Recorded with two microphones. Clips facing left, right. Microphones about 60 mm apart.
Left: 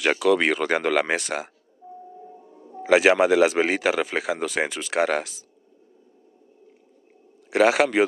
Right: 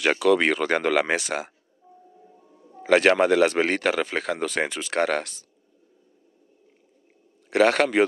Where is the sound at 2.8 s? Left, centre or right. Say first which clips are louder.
Left 1 dB; centre.